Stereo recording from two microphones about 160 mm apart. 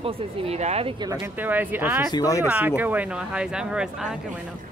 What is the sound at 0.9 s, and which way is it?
Speech, 25° right (ahead or behind).